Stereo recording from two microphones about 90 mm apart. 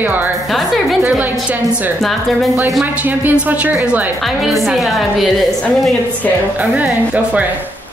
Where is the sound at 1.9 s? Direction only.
Centre (ahead or behind).